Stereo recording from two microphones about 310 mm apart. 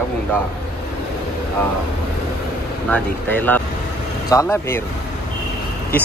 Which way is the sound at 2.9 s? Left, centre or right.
Centre.